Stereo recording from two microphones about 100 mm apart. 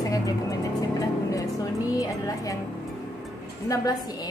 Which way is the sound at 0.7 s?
35° left (ahead or behind).